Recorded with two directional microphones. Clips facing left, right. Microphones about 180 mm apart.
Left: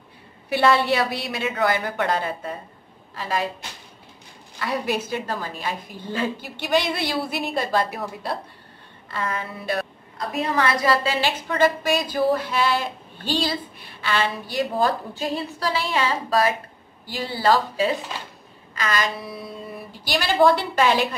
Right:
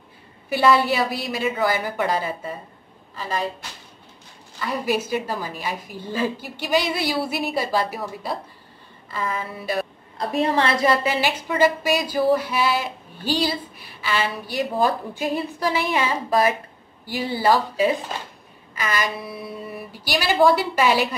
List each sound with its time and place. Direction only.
0.5 s a woman's voice: centre (ahead or behind)
4.6 s a woman's voice: centre (ahead or behind)
10.1 s a woman's voice: 30° right (ahead or behind)
11.1 s a woman's voice: 10° right (ahead or behind)
14.6 s speech: 15° right (ahead or behind)